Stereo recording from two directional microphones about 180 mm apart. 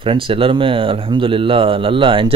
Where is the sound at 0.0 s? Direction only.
30° right (ahead or behind).